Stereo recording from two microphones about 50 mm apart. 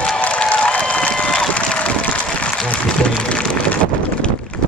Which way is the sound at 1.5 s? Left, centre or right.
Left.